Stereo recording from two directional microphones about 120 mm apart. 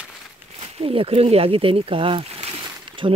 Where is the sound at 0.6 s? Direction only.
55° right (ahead or behind).